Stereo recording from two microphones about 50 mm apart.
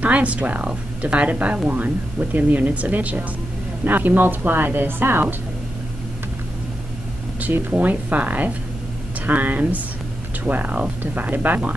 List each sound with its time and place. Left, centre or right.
0.0 s a woman's voice: right
7.7 s speech: right